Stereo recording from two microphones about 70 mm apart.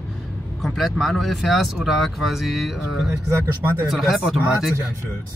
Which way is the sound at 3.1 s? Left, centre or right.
Right.